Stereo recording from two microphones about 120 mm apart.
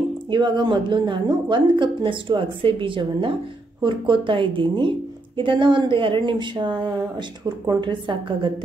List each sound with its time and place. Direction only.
0.3 s speech: 40° right (ahead or behind)